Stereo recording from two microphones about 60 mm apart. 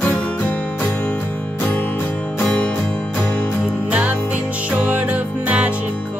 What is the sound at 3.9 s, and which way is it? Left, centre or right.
Music, right.